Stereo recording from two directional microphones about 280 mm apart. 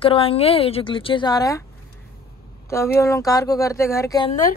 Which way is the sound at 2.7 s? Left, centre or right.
Centre.